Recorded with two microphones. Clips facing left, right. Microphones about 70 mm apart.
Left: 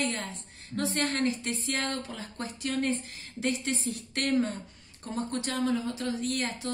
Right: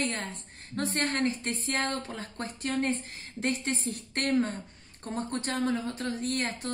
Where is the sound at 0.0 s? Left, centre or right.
Right.